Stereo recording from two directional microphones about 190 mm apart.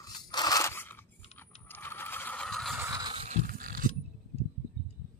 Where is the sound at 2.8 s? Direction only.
20° right (ahead or behind); by 3.9 s 50° right (ahead or behind).